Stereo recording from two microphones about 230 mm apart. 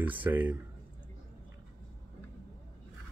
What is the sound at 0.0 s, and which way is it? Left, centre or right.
Speech, centre.